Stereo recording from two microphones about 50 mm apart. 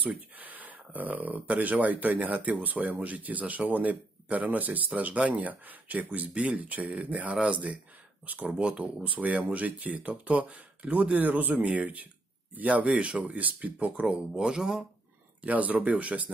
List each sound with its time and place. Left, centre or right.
0.0 s speech: right
14.3 s speech: centre
15.4 s speech: right